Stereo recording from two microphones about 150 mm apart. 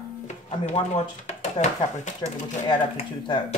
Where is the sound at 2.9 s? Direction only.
30° left (ahead or behind).